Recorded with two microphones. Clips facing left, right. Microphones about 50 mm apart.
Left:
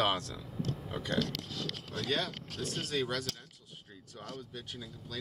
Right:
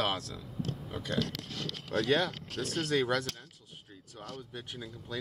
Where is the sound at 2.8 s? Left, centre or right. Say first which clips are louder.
Right 5 dB; right.